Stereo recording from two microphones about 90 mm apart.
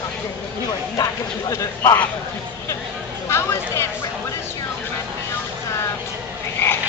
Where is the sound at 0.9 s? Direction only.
35° left (ahead or behind).